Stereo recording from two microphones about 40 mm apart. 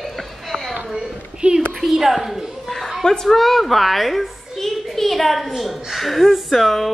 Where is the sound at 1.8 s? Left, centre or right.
Centre.